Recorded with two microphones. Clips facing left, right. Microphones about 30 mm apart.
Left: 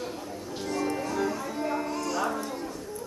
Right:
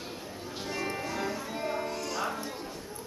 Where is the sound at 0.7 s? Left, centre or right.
Centre.